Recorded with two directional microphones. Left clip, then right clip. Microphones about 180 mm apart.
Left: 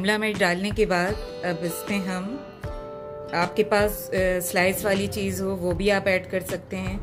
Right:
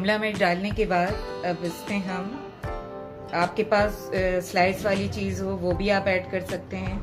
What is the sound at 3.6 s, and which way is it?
A woman's voice, 60° left (ahead or behind).